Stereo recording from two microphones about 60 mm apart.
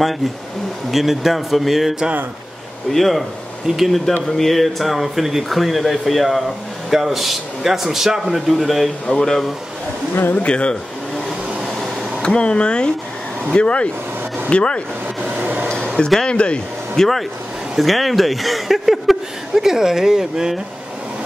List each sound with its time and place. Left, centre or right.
0.9 s speech: centre
9.0 s speech: centre
10.3 s speech: centre
11.2 s a sound: centre
12.2 s speech: centre
15.3 s a sound: right
16.3 s speech: centre